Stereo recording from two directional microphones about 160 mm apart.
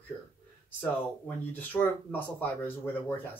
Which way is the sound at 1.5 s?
10° left (ahead or behind).